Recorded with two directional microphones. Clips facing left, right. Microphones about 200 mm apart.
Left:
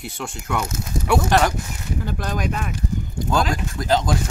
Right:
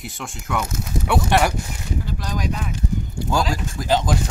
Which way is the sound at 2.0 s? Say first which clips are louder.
Left 3 dB; 55° left (ahead or behind).